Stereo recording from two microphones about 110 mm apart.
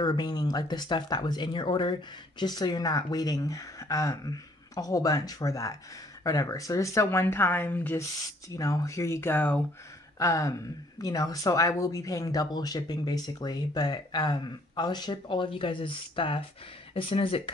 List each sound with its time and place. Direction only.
0.0 s speech: 40° left (ahead or behind); by 8.0 s 20° left (ahead or behind)
8.5 s speech: 30° left (ahead or behind); by 9.6 s 15° left (ahead or behind)
10.1 s a sound: 30° left (ahead or behind)
11.0 s speech: 35° left (ahead or behind); by 17.4 s 55° left (ahead or behind)